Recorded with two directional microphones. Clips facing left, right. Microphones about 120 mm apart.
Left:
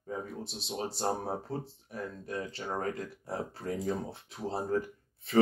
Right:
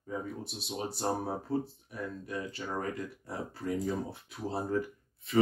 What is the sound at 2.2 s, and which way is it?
Speech, 30° left (ahead or behind).